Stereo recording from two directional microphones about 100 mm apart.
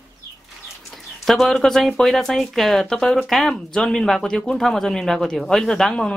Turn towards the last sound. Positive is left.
turn(degrees=5)  # may be behind; listen again after turning